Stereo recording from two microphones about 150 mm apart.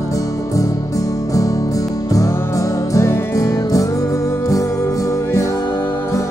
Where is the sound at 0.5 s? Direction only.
20° left (ahead or behind).